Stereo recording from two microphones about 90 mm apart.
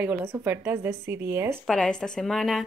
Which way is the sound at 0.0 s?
25° right (ahead or behind).